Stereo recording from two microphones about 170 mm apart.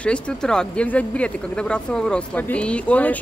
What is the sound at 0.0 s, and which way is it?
Speech, 5° left (ahead or behind).